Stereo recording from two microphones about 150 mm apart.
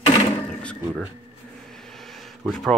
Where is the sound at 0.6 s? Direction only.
5° left (ahead or behind).